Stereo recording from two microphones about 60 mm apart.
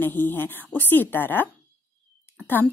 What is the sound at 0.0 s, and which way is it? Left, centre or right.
A woman's voice, left.